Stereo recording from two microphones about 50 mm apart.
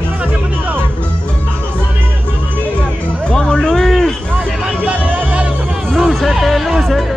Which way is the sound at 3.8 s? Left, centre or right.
Centre.